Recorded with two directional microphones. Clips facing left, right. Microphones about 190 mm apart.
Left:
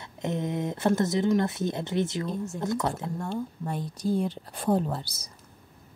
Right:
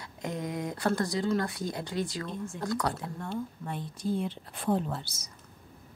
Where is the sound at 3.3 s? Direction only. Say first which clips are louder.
Left 3 dB; 40° left (ahead or behind).